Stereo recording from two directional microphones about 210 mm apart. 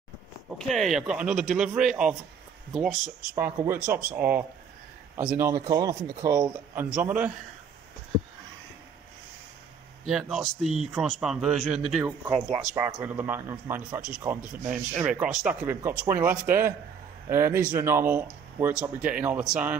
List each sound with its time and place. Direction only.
0.5 s a man's voice: centre (ahead or behind)
10.0 s speech: centre (ahead or behind)
12.3 s speech: 25° right (ahead or behind)
12.7 s a man's voice: 10° right (ahead or behind)